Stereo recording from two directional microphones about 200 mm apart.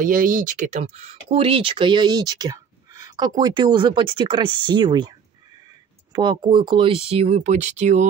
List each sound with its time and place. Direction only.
0.0 s speech: 45° right (ahead or behind); by 5.1 s 20° right (ahead or behind)
6.1 s speech: 20° right (ahead or behind)